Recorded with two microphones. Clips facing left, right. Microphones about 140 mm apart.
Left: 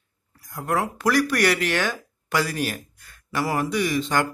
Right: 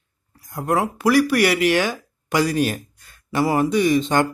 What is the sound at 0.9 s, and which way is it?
Speech, 10° right (ahead or behind).